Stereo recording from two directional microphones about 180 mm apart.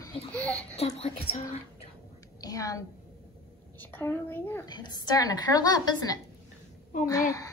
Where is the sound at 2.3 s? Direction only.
20° left (ahead or behind).